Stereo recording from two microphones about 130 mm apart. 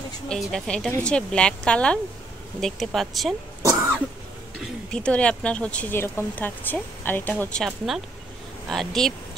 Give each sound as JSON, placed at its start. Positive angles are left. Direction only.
{"t": 0.3, "sound": "speech", "side_deg": 5}
{"t": 3.6, "sound": "cough", "side_deg": -20}
{"t": 4.9, "sound": "speech", "side_deg": 10}